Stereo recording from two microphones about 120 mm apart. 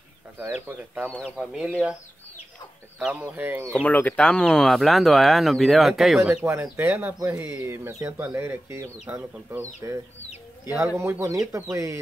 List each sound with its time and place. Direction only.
0.4 s speech: 15° right (ahead or behind)
1.1 s speech: 5° left (ahead or behind)
1.4 s speech: 5° right (ahead or behind)
3.0 s speech: 10° right (ahead or behind)
3.7 s speech: 15° left (ahead or behind); by 6.4 s 5° right (ahead or behind)
6.4 s speech: 20° right (ahead or behind)